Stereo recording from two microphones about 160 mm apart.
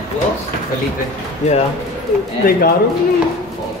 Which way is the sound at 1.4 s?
45° left (ahead or behind).